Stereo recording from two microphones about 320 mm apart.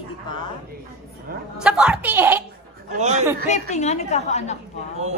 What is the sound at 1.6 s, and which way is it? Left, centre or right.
Speech, centre.